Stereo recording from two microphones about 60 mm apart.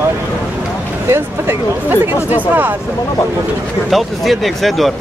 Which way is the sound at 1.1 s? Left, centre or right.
Right.